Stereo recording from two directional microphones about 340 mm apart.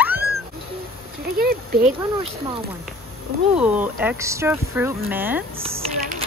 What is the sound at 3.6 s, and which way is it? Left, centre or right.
Speech, centre.